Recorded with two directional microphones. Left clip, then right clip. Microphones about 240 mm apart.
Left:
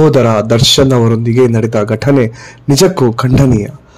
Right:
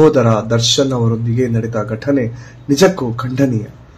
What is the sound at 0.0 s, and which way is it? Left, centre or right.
A man's voice, left.